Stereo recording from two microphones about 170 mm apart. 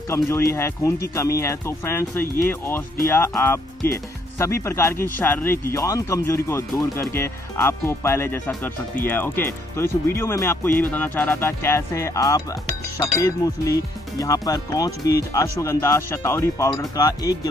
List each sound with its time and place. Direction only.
0.1 s speech: 15° left (ahead or behind)